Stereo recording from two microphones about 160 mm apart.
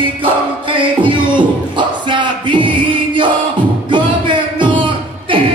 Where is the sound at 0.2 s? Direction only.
30° right (ahead or behind).